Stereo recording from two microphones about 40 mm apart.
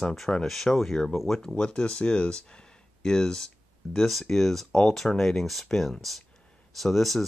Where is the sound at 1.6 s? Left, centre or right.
Left.